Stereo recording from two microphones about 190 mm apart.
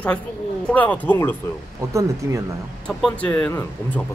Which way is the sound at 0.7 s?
10° left (ahead or behind).